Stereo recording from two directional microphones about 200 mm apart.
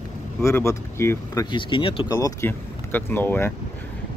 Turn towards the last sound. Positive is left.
turn(degrees=10)  # may be behind; listen again after turning